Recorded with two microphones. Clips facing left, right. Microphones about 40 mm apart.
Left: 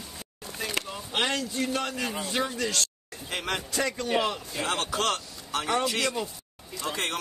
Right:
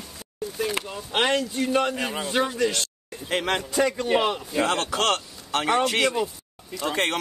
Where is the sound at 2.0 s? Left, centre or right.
Right.